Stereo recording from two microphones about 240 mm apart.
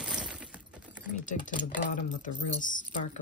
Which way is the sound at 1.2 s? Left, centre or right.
Left.